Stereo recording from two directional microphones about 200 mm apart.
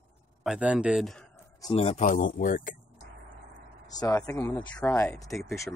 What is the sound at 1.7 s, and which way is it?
Speech, 30° left (ahead or behind).